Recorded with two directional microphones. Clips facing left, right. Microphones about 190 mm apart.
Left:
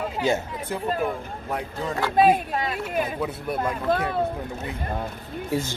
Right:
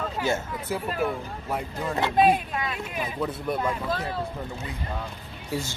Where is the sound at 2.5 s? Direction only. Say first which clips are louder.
Left 4 dB; 35° left (ahead or behind).